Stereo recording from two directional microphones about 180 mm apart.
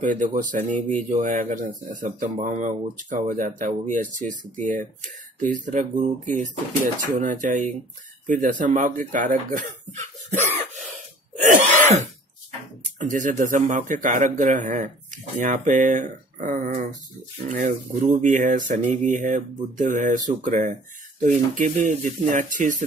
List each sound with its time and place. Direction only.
0.0 s speech: 45° right (ahead or behind)
13.1 s speech: 45° right (ahead or behind)